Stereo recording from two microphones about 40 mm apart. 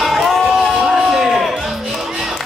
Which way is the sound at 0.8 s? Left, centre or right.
Centre.